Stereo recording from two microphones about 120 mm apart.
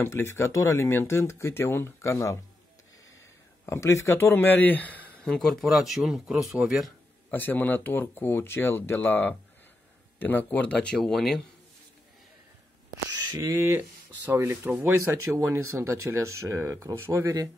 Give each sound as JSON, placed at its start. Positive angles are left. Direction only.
{"t": 0.0, "sound": "speech", "side_deg": 20}
{"t": 3.6, "sound": "speech", "side_deg": 25}
{"t": 7.2, "sound": "speech", "side_deg": 15}
{"t": 13.1, "sound": "speech", "side_deg": -25}